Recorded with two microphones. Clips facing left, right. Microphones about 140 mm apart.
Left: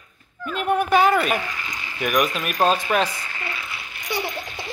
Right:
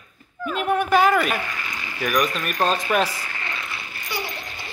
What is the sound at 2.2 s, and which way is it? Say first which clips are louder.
Speech: left 2 dB; 5° left (ahead or behind).